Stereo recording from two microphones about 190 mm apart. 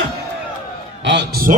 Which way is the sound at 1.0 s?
65° right (ahead or behind).